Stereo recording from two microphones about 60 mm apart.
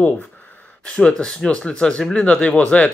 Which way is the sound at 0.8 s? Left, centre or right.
Centre.